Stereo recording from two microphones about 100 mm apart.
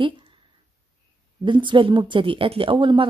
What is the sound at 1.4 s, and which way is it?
Speech, 55° right (ahead or behind).